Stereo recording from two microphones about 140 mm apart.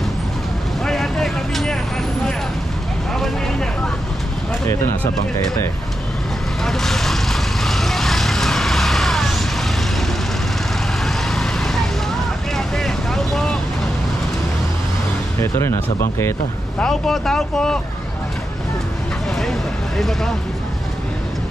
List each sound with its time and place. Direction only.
0.8 s vehicle: centre (ahead or behind)
3.2 s vehicle: 5° left (ahead or behind)
6.6 s vehicle: centre (ahead or behind)
11.1 s vehicle: 5° left (ahead or behind)
15.4 s speech: 20° left (ahead or behind)
16.8 s speech: 5° left (ahead or behind)
20.0 s speech: centre (ahead or behind)